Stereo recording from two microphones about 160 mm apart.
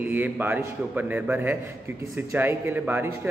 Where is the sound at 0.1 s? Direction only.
10° right (ahead or behind).